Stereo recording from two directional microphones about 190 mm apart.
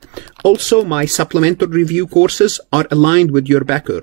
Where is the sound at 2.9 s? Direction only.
35° right (ahead or behind).